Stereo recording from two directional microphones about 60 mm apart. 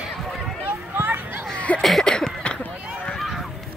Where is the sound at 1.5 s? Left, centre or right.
Left.